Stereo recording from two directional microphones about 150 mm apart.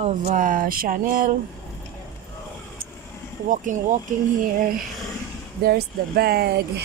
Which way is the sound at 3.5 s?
60° right (ahead or behind).